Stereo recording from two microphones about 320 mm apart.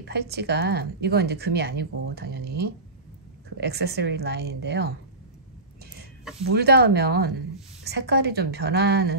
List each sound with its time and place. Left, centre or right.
0.0 s a woman's voice: right
6.5 s a woman's voice: right